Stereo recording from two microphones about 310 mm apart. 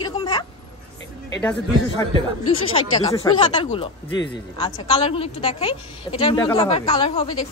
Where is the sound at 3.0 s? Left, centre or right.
Centre.